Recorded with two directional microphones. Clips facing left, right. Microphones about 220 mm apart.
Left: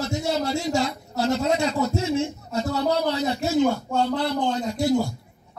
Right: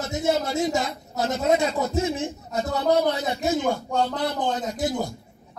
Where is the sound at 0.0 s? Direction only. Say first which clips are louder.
Left 1 dB; 20° right (ahead or behind).